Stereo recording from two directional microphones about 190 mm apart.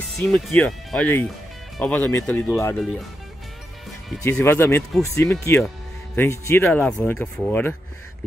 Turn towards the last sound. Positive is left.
turn(degrees=5)  # may be behind; listen again after turning